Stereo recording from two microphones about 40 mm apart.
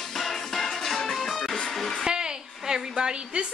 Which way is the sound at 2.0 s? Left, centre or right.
Centre.